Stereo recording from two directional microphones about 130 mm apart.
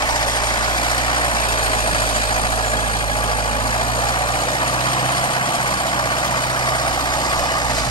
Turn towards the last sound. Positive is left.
turn(degrees=35)  # may be behind; listen again after turning